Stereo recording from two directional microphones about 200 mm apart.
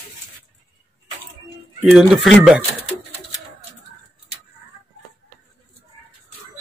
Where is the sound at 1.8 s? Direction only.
Centre (ahead or behind).